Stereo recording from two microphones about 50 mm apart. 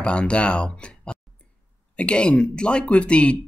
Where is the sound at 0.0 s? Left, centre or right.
Left.